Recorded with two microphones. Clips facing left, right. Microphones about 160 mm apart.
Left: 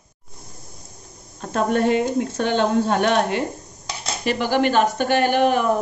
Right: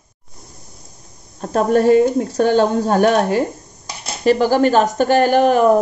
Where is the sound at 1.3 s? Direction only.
35° right (ahead or behind).